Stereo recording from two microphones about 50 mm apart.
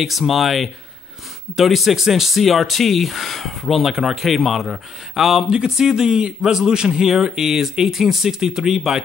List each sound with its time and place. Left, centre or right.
0.0 s a man's voice: centre